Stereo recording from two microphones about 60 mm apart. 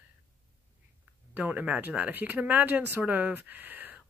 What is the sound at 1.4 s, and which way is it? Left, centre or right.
Speech, right.